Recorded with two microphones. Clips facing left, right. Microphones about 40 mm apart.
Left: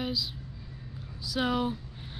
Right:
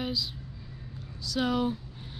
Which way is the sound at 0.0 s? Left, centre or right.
Centre.